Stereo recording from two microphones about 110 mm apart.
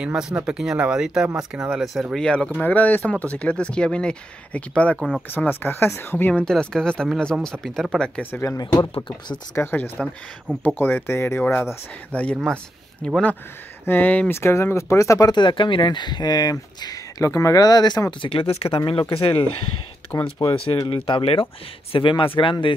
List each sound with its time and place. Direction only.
0.0 s speech: 5° right (ahead or behind)
2.1 s speech: 5° left (ahead or behind)
7.3 s speech: 10° right (ahead or behind)
8.0 s speech: 15° left (ahead or behind)
8.5 s speech: 35° left (ahead or behind)
9.6 s speech: 20° left (ahead or behind); by 18.3 s 40° left (ahead or behind)
18.3 s speech: 60° left (ahead or behind)
20.1 s speech: 25° left (ahead or behind)
20.5 s speech: 60° left (ahead or behind)